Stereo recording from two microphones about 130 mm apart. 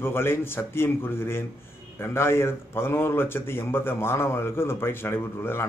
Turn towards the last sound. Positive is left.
turn(degrees=20)  # may be behind; listen again after turning